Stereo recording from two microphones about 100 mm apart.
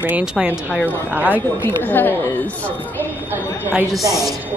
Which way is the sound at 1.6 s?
20° left (ahead or behind).